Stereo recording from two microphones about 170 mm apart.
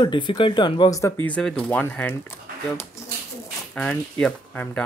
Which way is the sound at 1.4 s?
5° left (ahead or behind).